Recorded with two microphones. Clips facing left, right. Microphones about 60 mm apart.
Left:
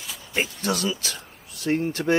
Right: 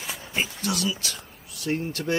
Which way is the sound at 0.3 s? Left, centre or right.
Left.